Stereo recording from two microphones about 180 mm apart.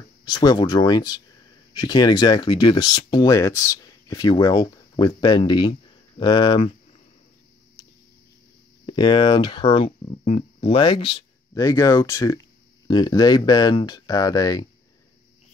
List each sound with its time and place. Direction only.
0.2 s speech: 20° left (ahead or behind)
8.8 s speech: 25° left (ahead or behind)
10.2 s speech: 40° left (ahead or behind)
10.7 s speech: 25° left (ahead or behind)